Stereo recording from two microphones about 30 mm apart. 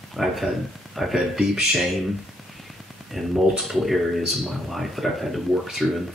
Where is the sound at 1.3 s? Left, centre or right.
Centre.